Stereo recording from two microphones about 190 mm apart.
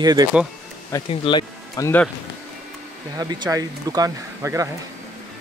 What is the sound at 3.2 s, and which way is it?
Speech, 20° right (ahead or behind).